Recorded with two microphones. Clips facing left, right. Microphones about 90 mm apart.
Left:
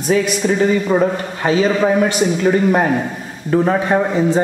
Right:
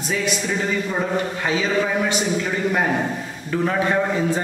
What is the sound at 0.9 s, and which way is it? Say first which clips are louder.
A man's voice: left 6 dB; 45° left (ahead or behind).